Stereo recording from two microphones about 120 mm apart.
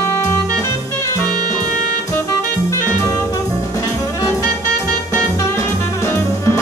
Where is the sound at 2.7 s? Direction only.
25° left (ahead or behind).